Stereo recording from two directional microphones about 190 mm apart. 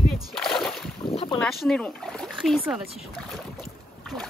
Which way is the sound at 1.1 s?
30° left (ahead or behind).